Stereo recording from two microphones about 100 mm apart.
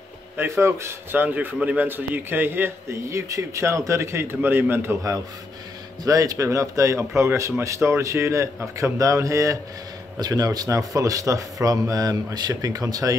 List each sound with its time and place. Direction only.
0.4 s a man's voice: 25° right (ahead or behind)
6.0 s a man's voice: 35° right (ahead or behind)